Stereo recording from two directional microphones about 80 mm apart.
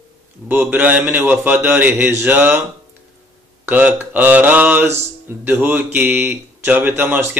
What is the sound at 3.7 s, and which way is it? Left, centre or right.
Speech, centre.